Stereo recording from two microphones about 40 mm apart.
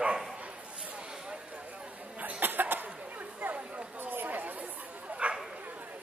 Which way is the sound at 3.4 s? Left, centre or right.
Right.